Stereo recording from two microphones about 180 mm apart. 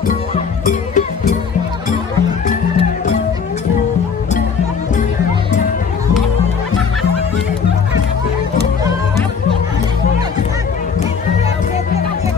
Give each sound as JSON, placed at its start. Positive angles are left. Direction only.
{"t": 0.3, "sound": "music", "side_deg": 45}
{"t": 2.4, "sound": "music", "side_deg": 40}